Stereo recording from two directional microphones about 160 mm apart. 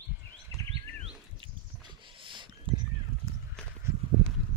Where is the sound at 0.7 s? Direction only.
40° right (ahead or behind).